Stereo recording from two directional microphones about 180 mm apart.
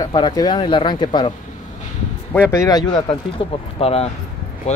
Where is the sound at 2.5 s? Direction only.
20° left (ahead or behind).